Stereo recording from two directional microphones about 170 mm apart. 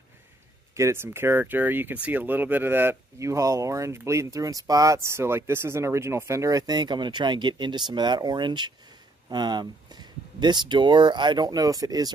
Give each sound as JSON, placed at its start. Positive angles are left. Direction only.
{"t": 0.7, "sound": "speech", "side_deg": -15}